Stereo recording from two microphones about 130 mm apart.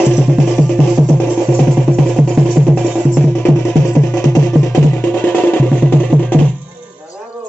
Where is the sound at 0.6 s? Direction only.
Centre (ahead or behind).